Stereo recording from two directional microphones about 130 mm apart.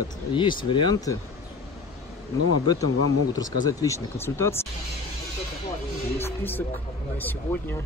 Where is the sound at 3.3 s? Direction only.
30° left (ahead or behind).